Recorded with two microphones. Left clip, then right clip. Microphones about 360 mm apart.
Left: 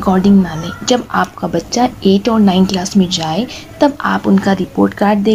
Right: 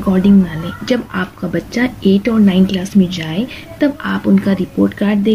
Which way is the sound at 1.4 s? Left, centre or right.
Left.